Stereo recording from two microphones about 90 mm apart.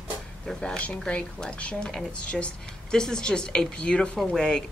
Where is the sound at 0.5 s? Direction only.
10° left (ahead or behind).